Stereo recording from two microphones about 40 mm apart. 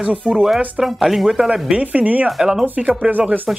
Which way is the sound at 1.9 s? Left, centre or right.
Right.